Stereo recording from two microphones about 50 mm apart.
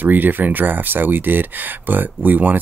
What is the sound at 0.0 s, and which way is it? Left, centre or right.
Speech, right.